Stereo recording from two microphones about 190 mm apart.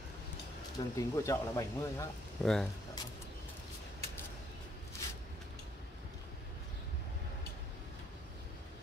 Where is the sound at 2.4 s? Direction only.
Centre (ahead or behind).